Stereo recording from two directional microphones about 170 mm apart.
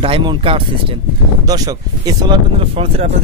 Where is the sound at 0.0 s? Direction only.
30° right (ahead or behind).